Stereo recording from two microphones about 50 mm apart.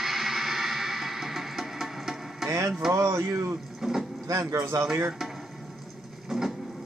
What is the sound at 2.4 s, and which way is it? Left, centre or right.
Music, right.